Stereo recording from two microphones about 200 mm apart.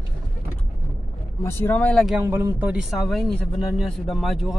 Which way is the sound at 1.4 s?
10° left (ahead or behind).